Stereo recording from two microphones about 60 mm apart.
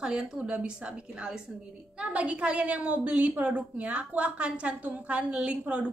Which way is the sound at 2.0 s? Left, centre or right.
Right.